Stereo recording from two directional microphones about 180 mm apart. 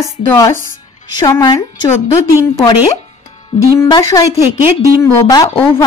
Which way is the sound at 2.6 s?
25° left (ahead or behind).